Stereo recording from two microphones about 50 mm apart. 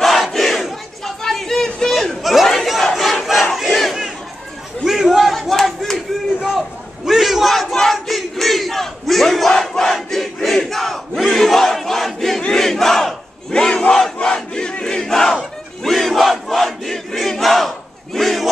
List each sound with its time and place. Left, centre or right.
0.0 s battle cry: centre
4.8 s a sound: centre
5.5 s crowd: centre
7.1 s battle cry: centre
9.9 s crowd: centre
13.5 s battle cry: centre
14.2 s crowd: centre